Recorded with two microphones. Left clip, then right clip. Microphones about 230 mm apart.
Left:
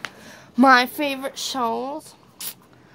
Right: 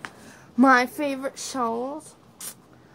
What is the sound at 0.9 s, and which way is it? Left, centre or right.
Speech, centre.